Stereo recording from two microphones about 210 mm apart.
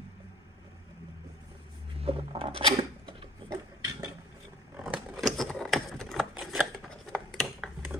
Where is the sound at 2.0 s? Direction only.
25° right (ahead or behind).